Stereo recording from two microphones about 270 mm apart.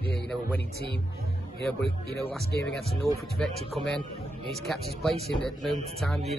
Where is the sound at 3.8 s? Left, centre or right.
Right.